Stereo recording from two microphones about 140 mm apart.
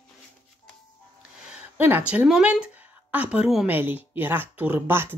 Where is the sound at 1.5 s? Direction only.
15° right (ahead or behind).